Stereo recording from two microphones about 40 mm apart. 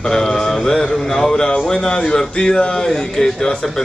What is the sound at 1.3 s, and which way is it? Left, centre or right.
Speech, centre.